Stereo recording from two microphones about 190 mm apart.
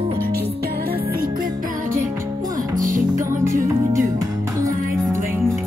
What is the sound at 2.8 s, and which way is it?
Music, 40° right (ahead or behind).